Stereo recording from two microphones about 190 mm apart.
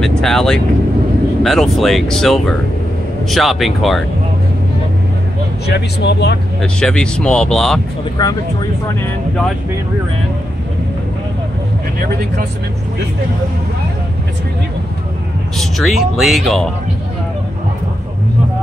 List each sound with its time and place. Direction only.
0.2 s speech: centre (ahead or behind)
5.7 s speech: 60° left (ahead or behind)
6.6 s speech: 5° left (ahead or behind)
8.2 s speech: 20° left (ahead or behind)
15.5 s speech: centre (ahead or behind)